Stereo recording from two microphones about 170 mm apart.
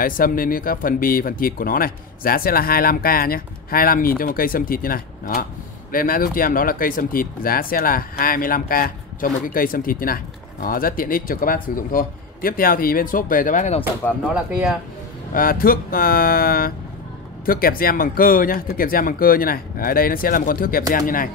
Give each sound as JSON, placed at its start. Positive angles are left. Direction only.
{"t": 0.0, "sound": "speech", "side_deg": 55}
{"t": 14.0, "sound": "speech", "side_deg": 0}
{"t": 15.3, "sound": "speech", "side_deg": 60}